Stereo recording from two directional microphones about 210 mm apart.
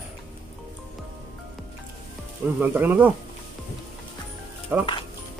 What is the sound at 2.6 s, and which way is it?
Speech, 10° right (ahead or behind).